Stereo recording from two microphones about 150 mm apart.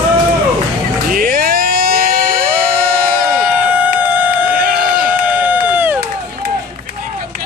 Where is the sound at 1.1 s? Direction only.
70° right (ahead or behind).